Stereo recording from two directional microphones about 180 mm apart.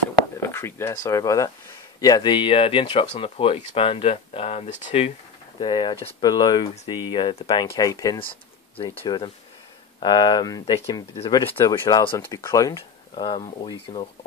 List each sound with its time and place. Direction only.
0.4 s speech: 15° left (ahead or behind); by 5.1 s 35° left (ahead or behind)
5.6 s speech: 25° left (ahead or behind)
12.2 s speech: 15° left (ahead or behind)